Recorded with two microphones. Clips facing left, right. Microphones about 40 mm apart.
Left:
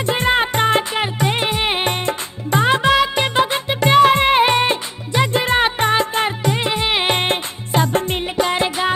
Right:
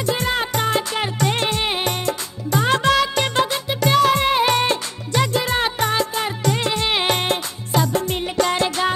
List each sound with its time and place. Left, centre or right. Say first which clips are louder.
0.0 s music: left 4 dB; left
0.9 s music: left 2 dB; centre
2.7 s music: left 1 dB; centre
3.4 s music: left 3 dB; left
4.6 s music: left 2 dB; left
6.4 s music: left 1 dB; centre
7.2 s music: left 2 dB; left
8.4 s music: left 1 dB; centre